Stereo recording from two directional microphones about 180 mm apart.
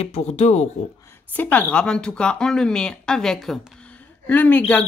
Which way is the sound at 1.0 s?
10° left (ahead or behind).